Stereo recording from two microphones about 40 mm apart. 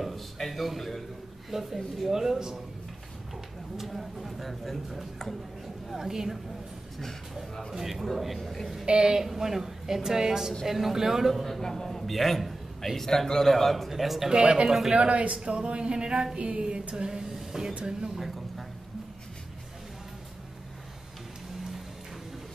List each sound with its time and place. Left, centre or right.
0.0 s a man's voice: centre
3.7 s a man's voice: centre
5.9 s a woman's voice: centre
7.7 s a man's voice: centre
8.8 s a woman's voice: right
11.3 s a man's voice: centre
14.3 s a sound: right
15.0 s speech: right
15.4 s a sound: right; by 17.7 s centre
17.7 s a woman's voice: centre